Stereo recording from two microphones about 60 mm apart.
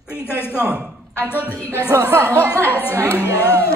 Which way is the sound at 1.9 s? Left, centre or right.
Right.